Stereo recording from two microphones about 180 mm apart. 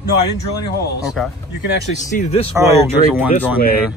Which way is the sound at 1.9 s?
40° left (ahead or behind).